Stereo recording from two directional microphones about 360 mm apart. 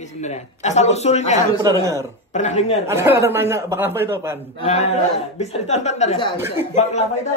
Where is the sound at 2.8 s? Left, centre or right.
Centre.